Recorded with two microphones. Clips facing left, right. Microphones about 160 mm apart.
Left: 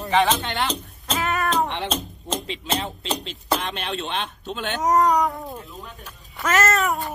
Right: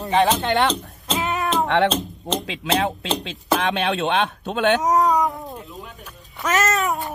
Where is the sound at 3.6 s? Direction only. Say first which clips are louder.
Right 7 dB; 70° right (ahead or behind).